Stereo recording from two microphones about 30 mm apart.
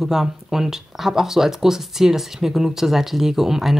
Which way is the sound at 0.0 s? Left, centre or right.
Centre.